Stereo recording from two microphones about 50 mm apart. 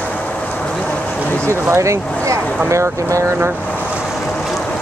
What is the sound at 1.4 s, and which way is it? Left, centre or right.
Speech, right.